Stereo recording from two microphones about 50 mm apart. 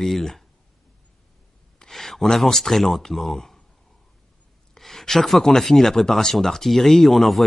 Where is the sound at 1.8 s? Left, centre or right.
Centre.